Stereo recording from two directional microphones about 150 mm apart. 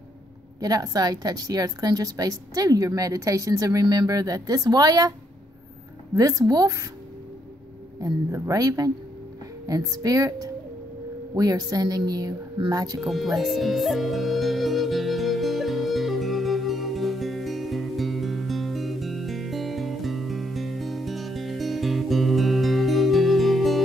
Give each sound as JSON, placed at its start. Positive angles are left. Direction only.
{"t": 0.6, "sound": "a woman's voice", "side_deg": -25}
{"t": 6.1, "sound": "a woman's voice", "side_deg": -25}
{"t": 8.0, "sound": "a woman's voice", "side_deg": -25}
{"t": 13.0, "sound": "speech", "side_deg": 0}
{"t": 13.4, "sound": "music", "side_deg": 0}